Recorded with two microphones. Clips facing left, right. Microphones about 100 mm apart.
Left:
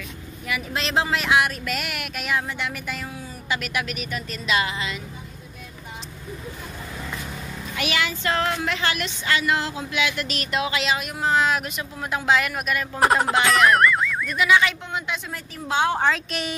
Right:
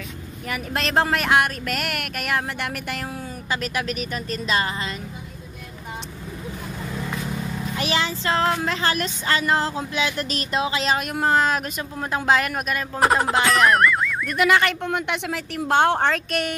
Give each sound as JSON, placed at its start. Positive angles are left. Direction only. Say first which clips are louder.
{"t": 0.5, "sound": "a woman's voice", "louder": "right 1 dB", "side_deg": -50}
{"t": 3.4, "sound": "speech", "louder": "right 1 dB", "side_deg": -35}
{"t": 7.7, "sound": "speech", "louder": "right 1 dB", "side_deg": -30}
{"t": 10.9, "sound": "speech", "louder": "right 4 dB", "side_deg": -50}
{"t": 13.0, "sound": "speech", "louder": "even", "side_deg": 0}
{"t": 14.3, "sound": "a woman's voice", "louder": "right 1 dB", "side_deg": -55}